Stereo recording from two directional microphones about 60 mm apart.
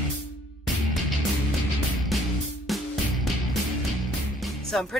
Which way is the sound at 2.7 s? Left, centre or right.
Centre.